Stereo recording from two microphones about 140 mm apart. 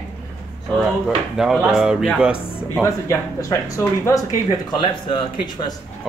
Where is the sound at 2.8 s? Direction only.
20° left (ahead or behind).